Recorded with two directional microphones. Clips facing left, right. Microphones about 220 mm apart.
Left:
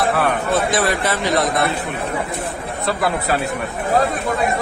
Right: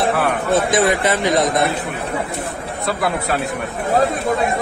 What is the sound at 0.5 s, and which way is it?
Speech, 20° right (ahead or behind).